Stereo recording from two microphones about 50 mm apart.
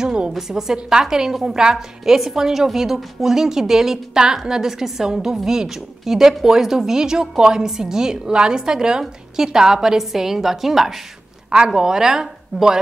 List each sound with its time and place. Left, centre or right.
0.0 s a woman's voice: centre